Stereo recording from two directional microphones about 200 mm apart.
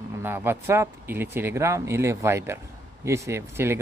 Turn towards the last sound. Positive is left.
turn(degrees=-15)  # may be behind; listen again after turning